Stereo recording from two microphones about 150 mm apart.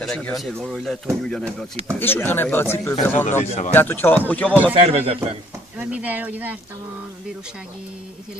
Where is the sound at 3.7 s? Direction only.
15° left (ahead or behind).